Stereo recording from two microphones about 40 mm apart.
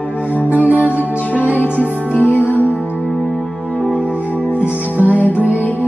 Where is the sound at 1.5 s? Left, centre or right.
Left.